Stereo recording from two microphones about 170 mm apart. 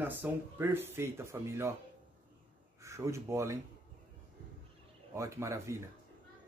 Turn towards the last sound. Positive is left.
turn(degrees=-15)  # may be behind; listen again after turning